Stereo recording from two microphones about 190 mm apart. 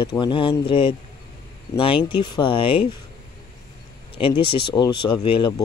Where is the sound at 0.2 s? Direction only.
25° left (ahead or behind).